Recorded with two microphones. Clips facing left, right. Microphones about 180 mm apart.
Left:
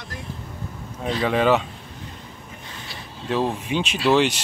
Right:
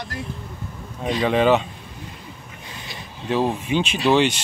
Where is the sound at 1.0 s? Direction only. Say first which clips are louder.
Right 2 dB; 15° right (ahead or behind).